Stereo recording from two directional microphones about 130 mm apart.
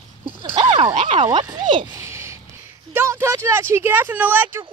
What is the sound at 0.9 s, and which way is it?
Speech, 60° right (ahead or behind).